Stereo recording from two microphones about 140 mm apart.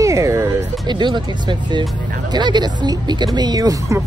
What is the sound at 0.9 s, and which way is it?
Speech, 35° right (ahead or behind).